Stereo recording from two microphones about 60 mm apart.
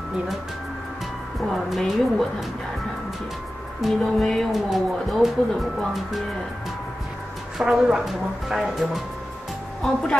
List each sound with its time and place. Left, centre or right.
1.5 s speech: centre
3.8 s speech: centre
7.5 s speech: centre